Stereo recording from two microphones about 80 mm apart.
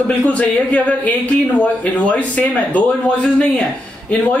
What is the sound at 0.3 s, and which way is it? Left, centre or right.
A man's voice, centre.